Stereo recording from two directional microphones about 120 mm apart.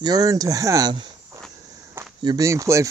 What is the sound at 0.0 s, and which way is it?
Speech, 30° right (ahead or behind).